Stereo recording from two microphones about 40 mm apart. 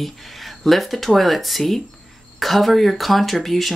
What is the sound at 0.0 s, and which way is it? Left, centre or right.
Speech, centre.